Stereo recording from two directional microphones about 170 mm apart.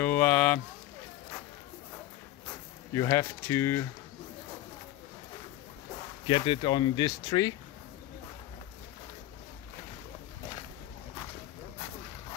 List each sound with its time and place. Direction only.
0.0 s a sound: 5° left (ahead or behind)
2.9 s speech: 15° left (ahead or behind)
6.2 s speech: 30° left (ahead or behind)